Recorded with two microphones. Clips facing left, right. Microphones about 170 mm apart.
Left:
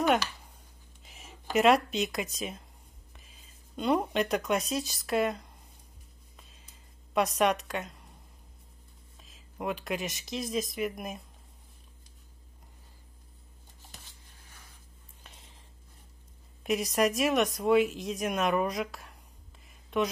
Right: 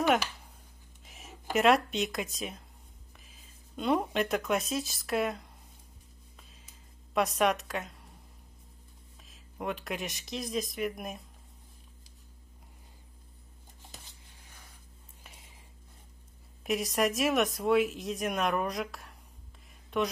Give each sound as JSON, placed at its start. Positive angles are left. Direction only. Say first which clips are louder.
{"t": 1.0, "sound": "speech", "louder": "right 1 dB", "side_deg": 0}
{"t": 7.2, "sound": "speech", "louder": "left 1 dB", "side_deg": 0}
{"t": 9.2, "sound": "speech", "louder": "left 1 dB", "side_deg": 0}
{"t": 16.6, "sound": "speech", "louder": "left 2 dB", "side_deg": 0}